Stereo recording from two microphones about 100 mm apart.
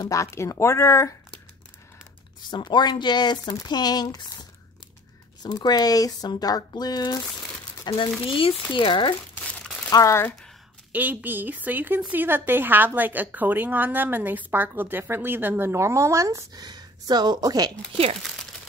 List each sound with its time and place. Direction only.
0.0 s speech: 30° left (ahead or behind)
2.5 s speech: 50° left (ahead or behind)
5.4 s speech: 45° left (ahead or behind)
8.3 s speech: 65° left (ahead or behind)
8.7 s speech: 50° left (ahead or behind)
9.5 s crumpling: 10° left (ahead or behind)
9.8 s speech: 40° left (ahead or behind)
10.9 s a woman's voice: 15° right (ahead or behind); by 16.6 s 30° right (ahead or behind)
16.6 s speech: 45° right (ahead or behind)